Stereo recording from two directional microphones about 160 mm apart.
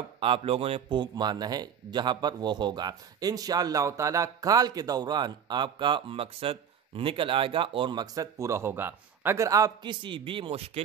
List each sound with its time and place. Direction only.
0.2 s a man's voice: 35° right (ahead or behind)